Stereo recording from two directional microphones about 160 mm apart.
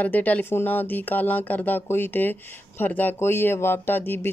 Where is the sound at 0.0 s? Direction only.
10° left (ahead or behind).